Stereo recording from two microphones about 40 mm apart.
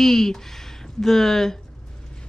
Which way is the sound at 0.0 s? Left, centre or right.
Centre.